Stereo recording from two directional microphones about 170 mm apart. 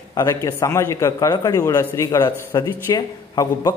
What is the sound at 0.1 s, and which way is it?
A man's voice, 20° left (ahead or behind).